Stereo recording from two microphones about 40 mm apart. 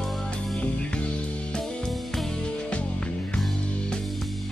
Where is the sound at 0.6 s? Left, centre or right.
Left.